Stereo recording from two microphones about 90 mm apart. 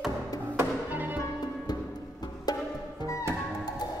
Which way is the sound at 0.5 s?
20° right (ahead or behind).